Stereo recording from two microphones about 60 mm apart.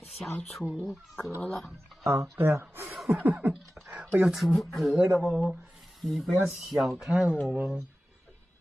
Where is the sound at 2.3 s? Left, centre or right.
Right.